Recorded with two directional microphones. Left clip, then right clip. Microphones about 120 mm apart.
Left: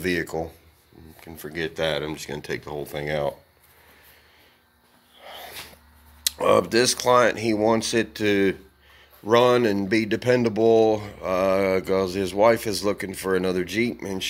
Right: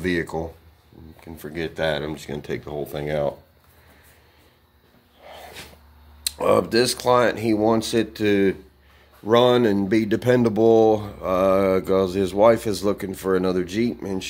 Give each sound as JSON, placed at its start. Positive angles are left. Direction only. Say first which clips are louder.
{"t": 0.0, "sound": "speech", "louder": "right 1 dB", "side_deg": 0}
{"t": 5.2, "sound": "a sound", "louder": "left 1 dB", "side_deg": 10}
{"t": 6.2, "sound": "speech", "louder": "even", "side_deg": 0}